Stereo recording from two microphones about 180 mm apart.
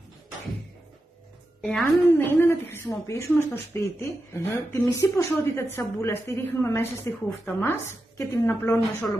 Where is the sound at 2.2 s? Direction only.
15° left (ahead or behind).